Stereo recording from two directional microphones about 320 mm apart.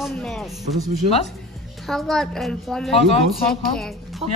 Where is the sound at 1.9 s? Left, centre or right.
Centre.